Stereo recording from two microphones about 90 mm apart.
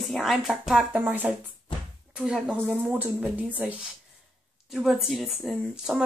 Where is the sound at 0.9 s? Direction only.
15° right (ahead or behind).